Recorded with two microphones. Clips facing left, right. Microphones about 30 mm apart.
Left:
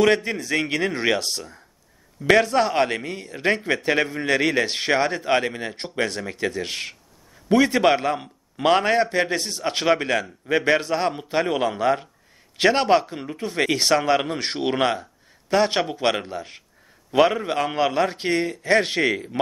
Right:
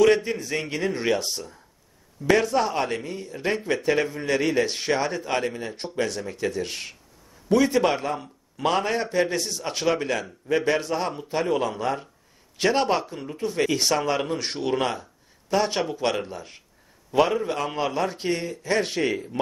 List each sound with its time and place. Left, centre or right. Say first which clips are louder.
0.0 s a man's voice: even; left